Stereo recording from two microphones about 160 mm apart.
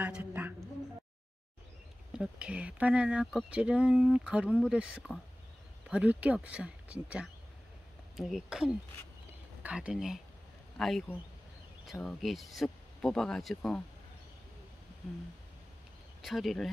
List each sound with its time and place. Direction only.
0.0 s a sound: 10° right (ahead or behind)
2.1 s speech: 5° right (ahead or behind)
16.2 s speech: centre (ahead or behind)